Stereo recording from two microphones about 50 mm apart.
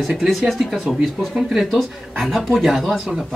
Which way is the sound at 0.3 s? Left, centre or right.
Centre.